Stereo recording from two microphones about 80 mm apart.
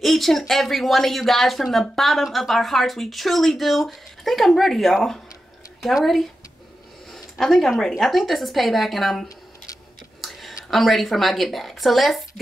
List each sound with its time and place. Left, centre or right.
0.0 s speech: centre
7.1 s a sound: centre
8.0 s speech: centre
10.7 s speech: centre